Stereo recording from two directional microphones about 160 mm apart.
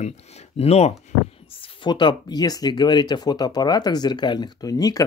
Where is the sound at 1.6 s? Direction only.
30° left (ahead or behind).